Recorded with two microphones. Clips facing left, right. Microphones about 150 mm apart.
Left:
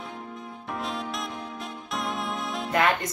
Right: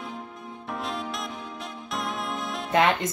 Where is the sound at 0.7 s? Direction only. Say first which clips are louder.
Even; centre (ahead or behind).